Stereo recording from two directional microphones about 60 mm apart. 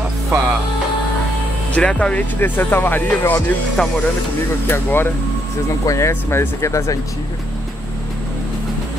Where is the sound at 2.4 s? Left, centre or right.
Left.